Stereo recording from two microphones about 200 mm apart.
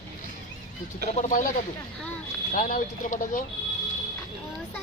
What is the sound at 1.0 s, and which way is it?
Speech, 40° left (ahead or behind).